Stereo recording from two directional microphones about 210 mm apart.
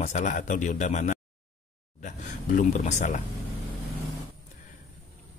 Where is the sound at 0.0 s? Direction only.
35° left (ahead or behind).